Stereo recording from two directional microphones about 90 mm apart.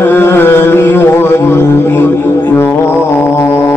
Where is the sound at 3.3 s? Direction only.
25° left (ahead or behind).